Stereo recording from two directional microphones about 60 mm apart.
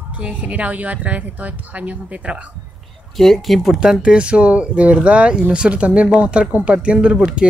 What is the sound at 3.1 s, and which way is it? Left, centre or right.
Speech, centre.